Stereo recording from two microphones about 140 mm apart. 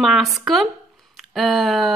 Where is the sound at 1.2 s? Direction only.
Centre (ahead or behind).